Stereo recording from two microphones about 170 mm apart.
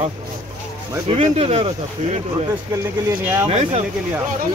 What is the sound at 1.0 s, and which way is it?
Speech, 40° right (ahead or behind).